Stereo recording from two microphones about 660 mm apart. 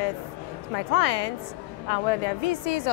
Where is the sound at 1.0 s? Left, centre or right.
Left.